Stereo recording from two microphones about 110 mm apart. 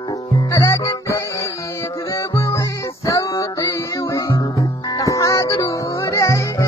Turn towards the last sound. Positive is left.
turn(degrees=30)  # may be behind; listen again after turning